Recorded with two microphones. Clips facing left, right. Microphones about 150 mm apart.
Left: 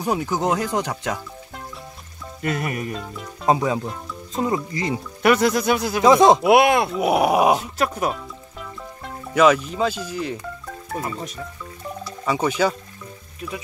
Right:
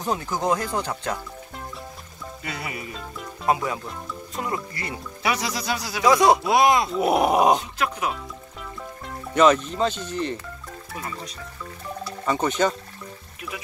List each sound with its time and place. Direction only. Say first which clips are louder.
0.0 s speech: left 3 dB; 10° left (ahead or behind)
2.4 s music: left 9 dB; 50° left (ahead or behind)
3.4 s speech: left 4 dB; 25° left (ahead or behind)
5.2 s speech: left 9 dB; 55° left (ahead or behind)
6.0 s speech: left 4 dB; 25° left (ahead or behind)
6.4 s speech: left 4 dB; 60° left (ahead or behind)
6.9 s speech: left 1 dB; 5° left (ahead or behind)
7.8 s speech: left 4 dB; 35° left (ahead or behind)
8.1 s music: left 2 dB; centre (ahead or behind)
10.9 s speech: left 7 dB; 40° left (ahead or behind)
12.3 s speech: left 2 dB; 5° left (ahead or behind)